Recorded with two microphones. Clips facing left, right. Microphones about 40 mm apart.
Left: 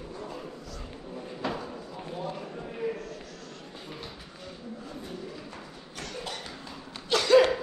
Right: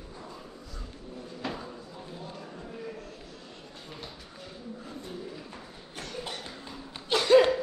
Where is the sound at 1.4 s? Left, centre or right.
Centre.